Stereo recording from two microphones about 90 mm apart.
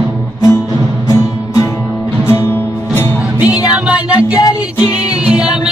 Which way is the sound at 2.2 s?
25° left (ahead or behind).